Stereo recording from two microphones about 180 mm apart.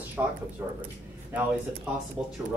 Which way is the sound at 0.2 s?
15° right (ahead or behind).